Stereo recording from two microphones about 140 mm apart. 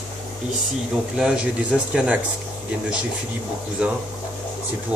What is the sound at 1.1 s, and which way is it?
Speech, 5° right (ahead or behind).